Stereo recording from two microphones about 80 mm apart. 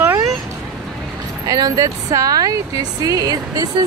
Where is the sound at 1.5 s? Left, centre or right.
Right.